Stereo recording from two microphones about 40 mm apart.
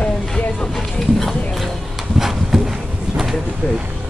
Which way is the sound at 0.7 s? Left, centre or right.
Centre.